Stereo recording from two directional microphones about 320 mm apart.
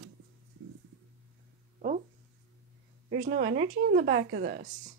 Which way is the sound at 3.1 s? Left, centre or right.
Right.